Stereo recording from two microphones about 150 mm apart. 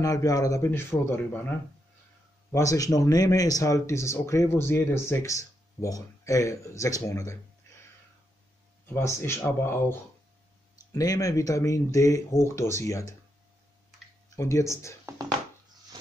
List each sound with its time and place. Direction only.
0.0 s a man's voice: 25° left (ahead or behind)
2.5 s speech: 20° left (ahead or behind)
8.8 s a man's voice: 15° left (ahead or behind)
14.3 s speech: 20° left (ahead or behind)